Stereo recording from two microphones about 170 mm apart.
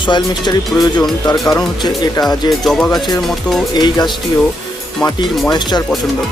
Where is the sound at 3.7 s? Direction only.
25° left (ahead or behind).